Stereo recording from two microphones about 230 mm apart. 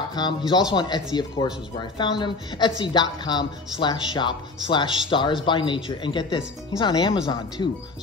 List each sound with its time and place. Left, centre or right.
0.1 s speech: centre